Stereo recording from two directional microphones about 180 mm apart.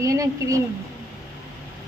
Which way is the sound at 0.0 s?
20° right (ahead or behind).